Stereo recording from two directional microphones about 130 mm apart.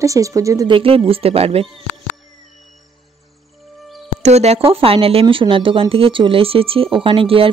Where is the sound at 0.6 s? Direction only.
45° right (ahead or behind).